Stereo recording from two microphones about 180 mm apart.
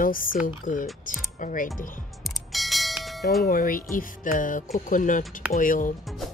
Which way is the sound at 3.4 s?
50° left (ahead or behind).